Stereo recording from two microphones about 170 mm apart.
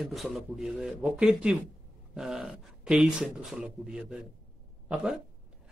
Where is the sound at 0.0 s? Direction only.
Centre (ahead or behind).